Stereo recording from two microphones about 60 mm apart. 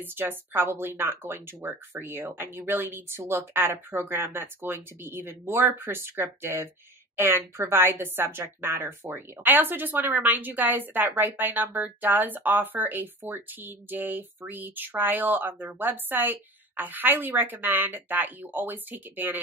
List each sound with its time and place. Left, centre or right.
0.0 s speech: right